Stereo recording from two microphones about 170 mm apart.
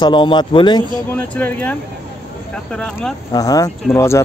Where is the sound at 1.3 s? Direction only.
10° left (ahead or behind).